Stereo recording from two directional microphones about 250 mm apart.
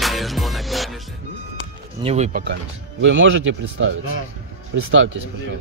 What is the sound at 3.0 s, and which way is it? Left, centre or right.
Speech, right.